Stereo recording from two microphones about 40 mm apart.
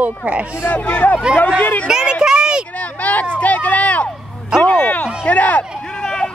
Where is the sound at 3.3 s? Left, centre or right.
Left.